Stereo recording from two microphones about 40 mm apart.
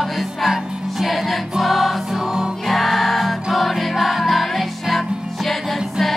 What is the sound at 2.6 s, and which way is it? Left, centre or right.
Music, centre.